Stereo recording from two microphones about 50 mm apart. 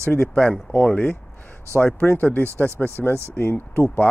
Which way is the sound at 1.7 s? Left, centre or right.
Left.